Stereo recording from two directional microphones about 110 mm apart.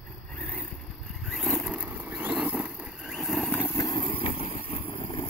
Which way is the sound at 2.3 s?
5° right (ahead or behind).